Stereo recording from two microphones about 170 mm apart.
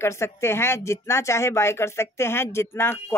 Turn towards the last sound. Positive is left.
turn(degrees=15)  # may be behind; listen again after turning